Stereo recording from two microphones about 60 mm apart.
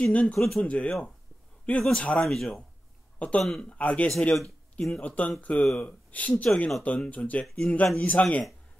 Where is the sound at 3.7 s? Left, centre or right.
Left.